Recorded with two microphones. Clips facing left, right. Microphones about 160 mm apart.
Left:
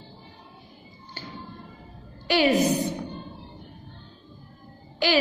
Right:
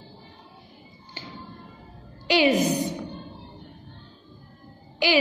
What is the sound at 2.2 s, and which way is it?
Speech, 15° right (ahead or behind).